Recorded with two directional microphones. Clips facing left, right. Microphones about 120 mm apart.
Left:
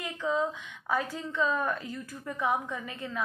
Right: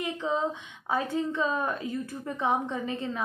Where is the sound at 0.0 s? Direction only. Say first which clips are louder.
Right 1 dB; 25° right (ahead or behind).